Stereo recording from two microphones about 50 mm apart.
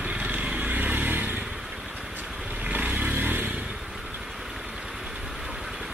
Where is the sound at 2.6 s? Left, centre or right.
Right.